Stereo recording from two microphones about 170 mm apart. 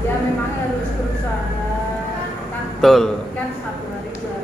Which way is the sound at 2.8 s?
Centre (ahead or behind).